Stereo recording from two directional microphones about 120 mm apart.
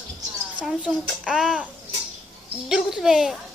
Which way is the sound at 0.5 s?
5° right (ahead or behind).